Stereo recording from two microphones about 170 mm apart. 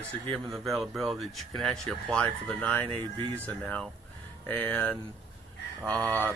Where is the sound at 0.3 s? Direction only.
Centre (ahead or behind).